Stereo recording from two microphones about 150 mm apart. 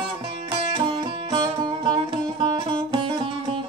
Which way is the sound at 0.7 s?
30° right (ahead or behind).